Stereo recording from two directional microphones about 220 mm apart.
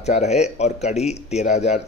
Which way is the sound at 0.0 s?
30° left (ahead or behind).